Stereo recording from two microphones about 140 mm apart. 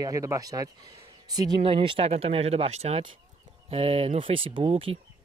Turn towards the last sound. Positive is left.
turn(degrees=-45)  # may be behind; listen again after turning